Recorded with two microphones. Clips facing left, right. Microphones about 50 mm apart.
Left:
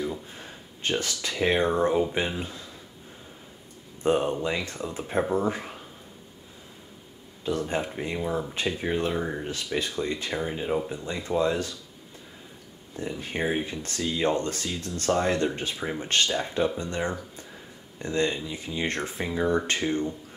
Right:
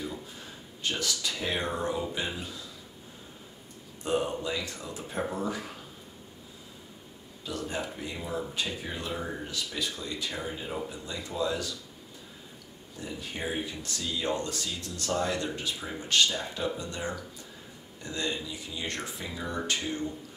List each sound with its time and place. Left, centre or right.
0.4 s speech: left
4.0 s speech: left
7.4 s speech: left
8.2 s speech: left
8.5 s speech: left
13.2 s speech: left